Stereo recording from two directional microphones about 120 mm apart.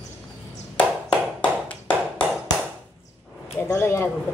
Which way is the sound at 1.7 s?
10° left (ahead or behind).